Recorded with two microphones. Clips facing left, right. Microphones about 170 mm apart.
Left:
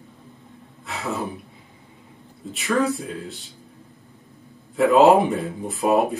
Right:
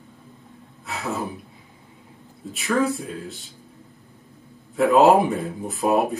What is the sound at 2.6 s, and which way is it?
Speech, 20° left (ahead or behind).